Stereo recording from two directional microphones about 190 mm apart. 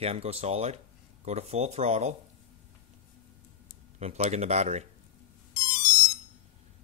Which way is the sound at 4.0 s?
35° right (ahead or behind).